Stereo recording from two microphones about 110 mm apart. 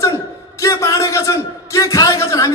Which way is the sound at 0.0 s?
30° left (ahead or behind).